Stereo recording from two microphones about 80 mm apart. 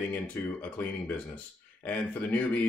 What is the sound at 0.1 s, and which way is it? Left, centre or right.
Speech, left.